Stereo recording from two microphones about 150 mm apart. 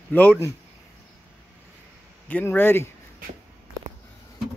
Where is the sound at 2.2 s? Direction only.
10° left (ahead or behind).